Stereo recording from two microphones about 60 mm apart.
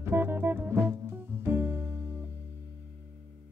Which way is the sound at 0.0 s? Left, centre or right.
Right.